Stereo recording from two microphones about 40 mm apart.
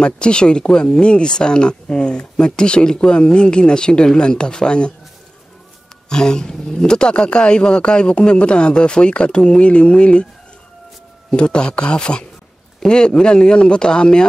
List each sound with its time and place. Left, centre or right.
0.0 s a man's voice: left
6.0 s a man's voice: centre
11.3 s a man's voice: left